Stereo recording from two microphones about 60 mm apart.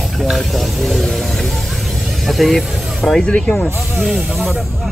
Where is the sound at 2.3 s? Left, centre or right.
Centre.